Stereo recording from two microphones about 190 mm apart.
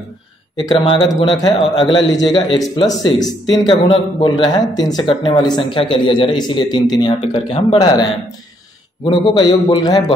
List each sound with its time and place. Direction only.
0.7 s a man's voice: 25° left (ahead or behind)